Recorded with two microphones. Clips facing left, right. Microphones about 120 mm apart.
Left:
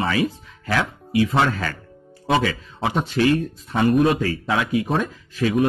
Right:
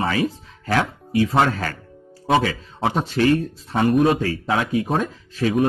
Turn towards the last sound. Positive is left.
turn(degrees=-35)  # may be behind; listen again after turning